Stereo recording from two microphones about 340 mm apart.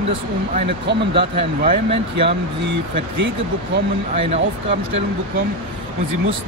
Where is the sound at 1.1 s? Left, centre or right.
Centre.